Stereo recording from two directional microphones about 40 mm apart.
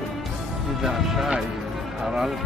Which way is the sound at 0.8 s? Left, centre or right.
Centre.